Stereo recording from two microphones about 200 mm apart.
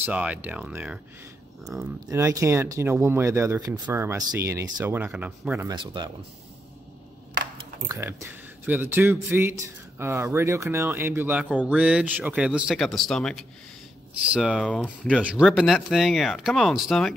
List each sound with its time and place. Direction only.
0.0 s speech: 5° right (ahead or behind)
2.0 s speech: 15° right (ahead or behind)
5.6 s speech: 20° right (ahead or behind)
7.9 s speech: 15° right (ahead or behind)